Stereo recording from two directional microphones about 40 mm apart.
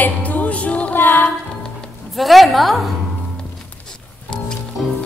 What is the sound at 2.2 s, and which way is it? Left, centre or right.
Speech, centre.